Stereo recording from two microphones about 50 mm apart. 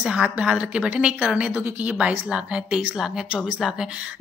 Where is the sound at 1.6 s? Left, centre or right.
Right.